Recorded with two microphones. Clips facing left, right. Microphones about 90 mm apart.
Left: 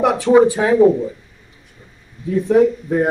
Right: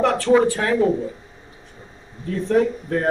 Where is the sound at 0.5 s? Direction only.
15° left (ahead or behind).